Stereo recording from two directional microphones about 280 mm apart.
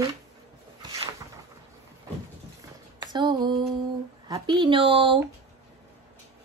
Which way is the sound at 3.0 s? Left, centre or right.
Centre.